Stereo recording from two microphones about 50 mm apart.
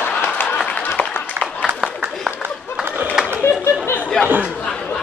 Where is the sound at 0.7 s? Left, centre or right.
Left.